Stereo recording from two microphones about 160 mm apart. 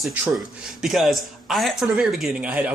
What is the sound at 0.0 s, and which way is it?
Speech, 5° right (ahead or behind).